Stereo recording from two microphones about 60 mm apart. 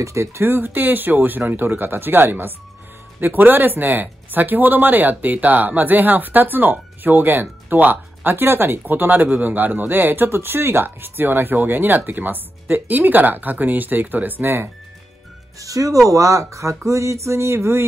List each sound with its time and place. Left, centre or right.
0.0 s speech: right
15.6 s speech: right